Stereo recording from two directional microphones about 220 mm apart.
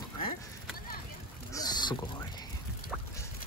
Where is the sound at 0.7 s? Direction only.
40° left (ahead or behind).